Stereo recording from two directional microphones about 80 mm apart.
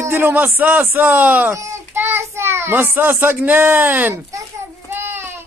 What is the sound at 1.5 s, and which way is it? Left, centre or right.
A child's voice, right.